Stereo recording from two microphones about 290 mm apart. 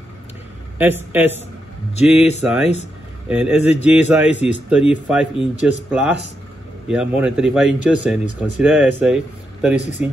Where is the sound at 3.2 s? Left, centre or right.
Centre.